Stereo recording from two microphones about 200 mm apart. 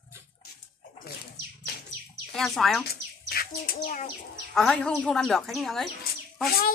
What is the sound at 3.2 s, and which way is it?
Bird, 50° left (ahead or behind).